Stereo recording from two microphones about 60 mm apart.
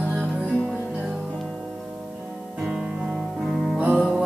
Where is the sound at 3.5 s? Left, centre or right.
Centre.